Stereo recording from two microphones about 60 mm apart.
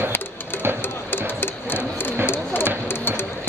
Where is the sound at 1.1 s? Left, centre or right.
Left.